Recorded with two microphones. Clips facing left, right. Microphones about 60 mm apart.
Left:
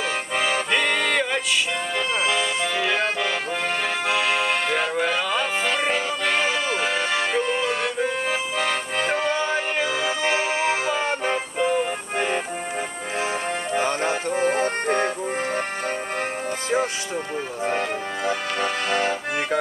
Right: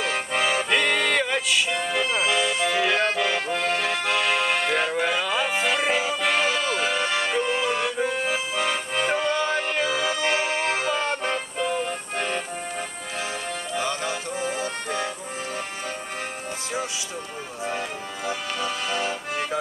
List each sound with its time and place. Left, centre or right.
0.3 s accordion: centre
13.7 s music: left
17.6 s accordion: left